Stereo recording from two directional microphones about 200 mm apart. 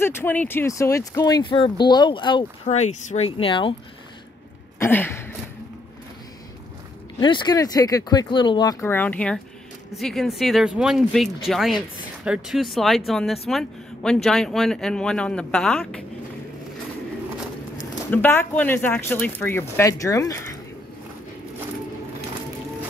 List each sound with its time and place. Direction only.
0.0 s speech: 10° left (ahead or behind); by 3.7 s 25° left (ahead or behind)
4.7 s a sound: 10° left (ahead or behind)
7.2 s speech: 20° left (ahead or behind)
8.8 s speech: 10° left (ahead or behind)
17.7 s speech: 10° left (ahead or behind)